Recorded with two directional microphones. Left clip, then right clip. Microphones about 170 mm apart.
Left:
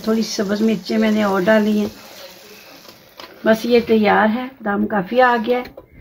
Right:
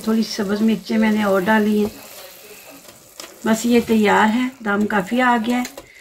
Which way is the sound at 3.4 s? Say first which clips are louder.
Left 4 dB; 45° left (ahead or behind).